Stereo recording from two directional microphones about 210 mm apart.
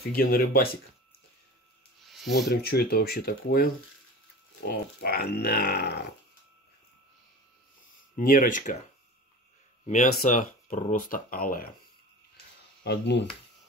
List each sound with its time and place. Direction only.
0.1 s speech: 45° left (ahead or behind)
2.0 s a sound: centre (ahead or behind)
2.5 s speech: 50° left (ahead or behind)
4.6 s speech: 45° left (ahead or behind)
8.2 s speech: 40° left (ahead or behind)
9.8 s speech: 40° left (ahead or behind)
12.8 s speech: 55° left (ahead or behind)